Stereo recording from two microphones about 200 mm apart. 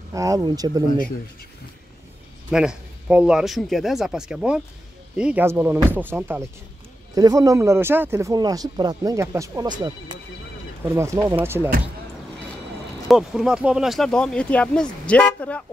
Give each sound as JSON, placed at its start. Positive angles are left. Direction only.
{"t": 0.1, "sound": "speech", "side_deg": -15}
{"t": 2.5, "sound": "speech", "side_deg": -5}
{"t": 13.1, "sound": "speech", "side_deg": 0}